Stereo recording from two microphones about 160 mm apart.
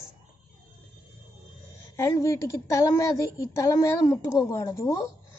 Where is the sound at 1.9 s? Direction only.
20° left (ahead or behind).